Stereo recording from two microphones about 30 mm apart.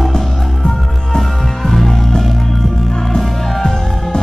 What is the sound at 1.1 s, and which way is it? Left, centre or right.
Music, centre.